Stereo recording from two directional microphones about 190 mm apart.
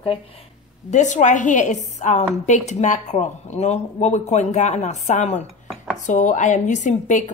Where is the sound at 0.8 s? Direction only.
40° left (ahead or behind).